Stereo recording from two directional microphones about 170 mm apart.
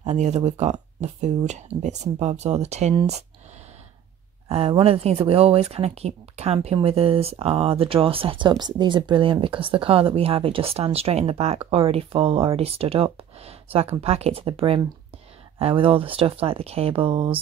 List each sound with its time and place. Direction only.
0.0 s speech: 40° right (ahead or behind)
4.5 s speech: 35° right (ahead or behind)